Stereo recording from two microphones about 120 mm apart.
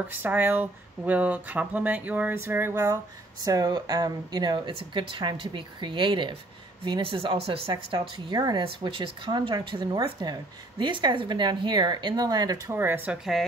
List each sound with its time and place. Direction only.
0.1 s a woman's voice: 15° right (ahead or behind); by 12.7 s 30° right (ahead or behind)
12.7 s speech: 15° right (ahead or behind)